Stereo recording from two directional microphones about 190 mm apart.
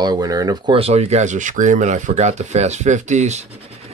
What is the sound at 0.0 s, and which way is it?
Speech, 20° right (ahead or behind).